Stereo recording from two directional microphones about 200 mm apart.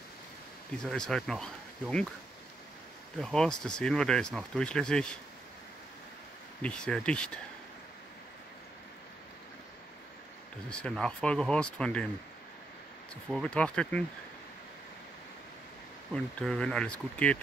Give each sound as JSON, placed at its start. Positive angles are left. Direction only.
{"t": 0.8, "sound": "speech", "side_deg": 5}
{"t": 3.2, "sound": "speech", "side_deg": 0}
{"t": 6.6, "sound": "speech", "side_deg": 5}
{"t": 10.7, "sound": "speech", "side_deg": 5}
{"t": 13.1, "sound": "speech", "side_deg": 5}
{"t": 16.3, "sound": "speech", "side_deg": 5}